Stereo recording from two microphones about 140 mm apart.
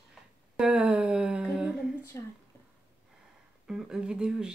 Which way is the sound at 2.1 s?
20° left (ahead or behind).